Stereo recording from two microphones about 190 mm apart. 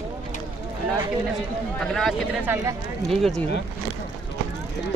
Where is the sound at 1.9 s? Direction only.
Centre (ahead or behind).